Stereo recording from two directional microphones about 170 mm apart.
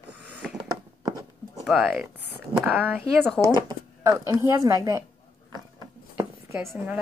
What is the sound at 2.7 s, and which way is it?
A woman's voice, 10° right (ahead or behind).